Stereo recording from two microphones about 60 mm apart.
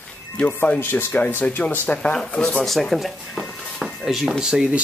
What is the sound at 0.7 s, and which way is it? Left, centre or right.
Speech, left.